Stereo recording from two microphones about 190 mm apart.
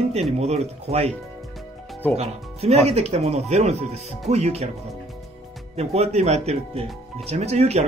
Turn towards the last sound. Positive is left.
turn(degrees=-35)  # may be behind; listen again after turning